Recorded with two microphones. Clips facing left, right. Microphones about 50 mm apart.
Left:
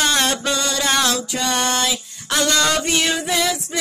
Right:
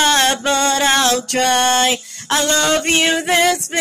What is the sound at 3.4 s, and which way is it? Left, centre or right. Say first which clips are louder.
A capella: right 6 dB; right.